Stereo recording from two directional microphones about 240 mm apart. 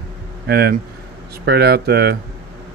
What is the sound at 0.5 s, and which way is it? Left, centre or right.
A man's voice, right.